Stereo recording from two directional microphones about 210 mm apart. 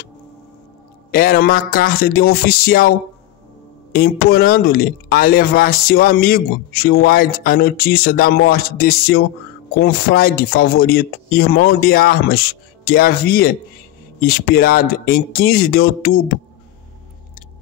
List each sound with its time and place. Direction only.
1.1 s speech: 45° left (ahead or behind)
3.9 s speech: 45° left (ahead or behind)